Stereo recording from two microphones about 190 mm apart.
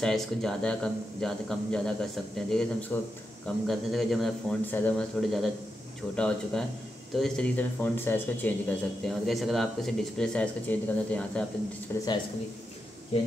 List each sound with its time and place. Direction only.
0.0 s speech: centre (ahead or behind)
11.9 s speech: 20° left (ahead or behind)